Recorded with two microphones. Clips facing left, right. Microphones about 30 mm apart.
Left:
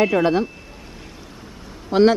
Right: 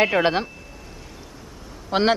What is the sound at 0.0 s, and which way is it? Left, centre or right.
Speech, right.